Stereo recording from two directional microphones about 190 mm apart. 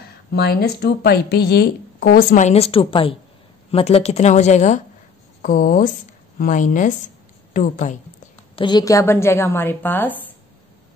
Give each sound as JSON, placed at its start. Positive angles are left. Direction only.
{"t": 0.3, "sound": "a woman's voice", "side_deg": 55}
{"t": 2.3, "sound": "a woman's voice", "side_deg": 35}
{"t": 8.5, "sound": "a woman's voice", "side_deg": 20}